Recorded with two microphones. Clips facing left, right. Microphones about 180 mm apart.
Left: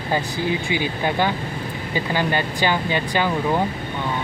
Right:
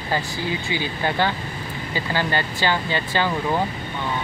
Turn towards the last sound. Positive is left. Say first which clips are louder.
# left 2 dB
turn(degrees=15)  # may be behind; listen again after turning